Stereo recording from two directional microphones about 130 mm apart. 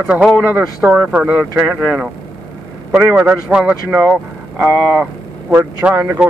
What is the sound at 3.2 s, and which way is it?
A man's voice, 5° right (ahead or behind).